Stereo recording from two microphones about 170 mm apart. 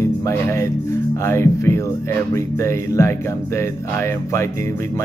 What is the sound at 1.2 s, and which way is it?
Speech, 15° left (ahead or behind).